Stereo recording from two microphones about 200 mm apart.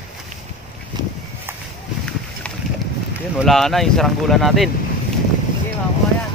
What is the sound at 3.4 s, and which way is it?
Speech, centre (ahead or behind).